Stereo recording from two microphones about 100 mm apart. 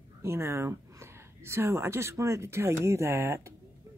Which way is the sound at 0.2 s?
25° right (ahead or behind).